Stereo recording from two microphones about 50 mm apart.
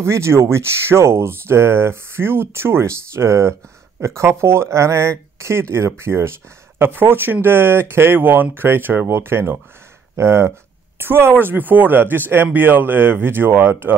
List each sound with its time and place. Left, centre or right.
0.0 s speech: right
5.4 s speech: right
6.8 s speech: right
11.4 s speech: right